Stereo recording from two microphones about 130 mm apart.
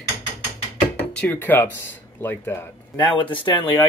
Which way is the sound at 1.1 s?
10° left (ahead or behind).